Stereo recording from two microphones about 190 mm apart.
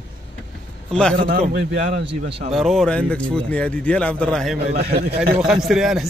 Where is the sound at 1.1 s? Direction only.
55° right (ahead or behind).